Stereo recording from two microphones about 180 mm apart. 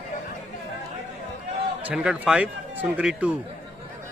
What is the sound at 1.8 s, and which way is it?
A man's voice, 5° right (ahead or behind).